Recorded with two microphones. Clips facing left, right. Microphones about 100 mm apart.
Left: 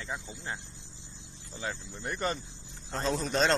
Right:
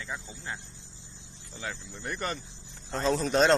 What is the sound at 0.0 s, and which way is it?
Speech, 15° left (ahead or behind).